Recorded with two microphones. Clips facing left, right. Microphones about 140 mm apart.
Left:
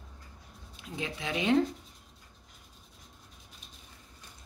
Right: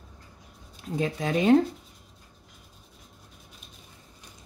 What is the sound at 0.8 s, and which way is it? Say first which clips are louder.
Speech: right 8 dB; 40° right (ahead or behind).